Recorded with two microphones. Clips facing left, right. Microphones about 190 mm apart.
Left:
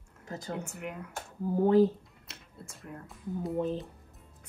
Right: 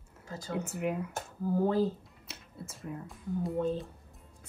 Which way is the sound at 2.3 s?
Centre (ahead or behind).